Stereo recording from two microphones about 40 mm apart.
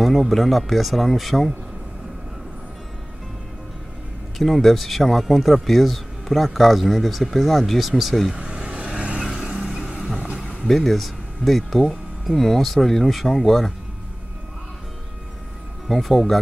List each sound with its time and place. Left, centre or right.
0.0 s speech: centre
4.4 s speech: centre
8.4 s vehicle: right
9.4 s vehicle: centre
10.7 s speech: centre
15.9 s speech: centre